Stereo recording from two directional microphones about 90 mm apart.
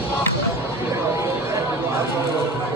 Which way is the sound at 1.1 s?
30° right (ahead or behind).